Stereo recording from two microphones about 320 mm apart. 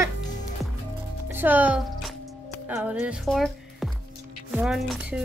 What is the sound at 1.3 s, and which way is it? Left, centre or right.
Speech, centre.